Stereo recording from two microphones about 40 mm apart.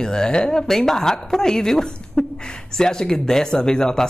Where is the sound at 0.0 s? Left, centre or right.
Centre.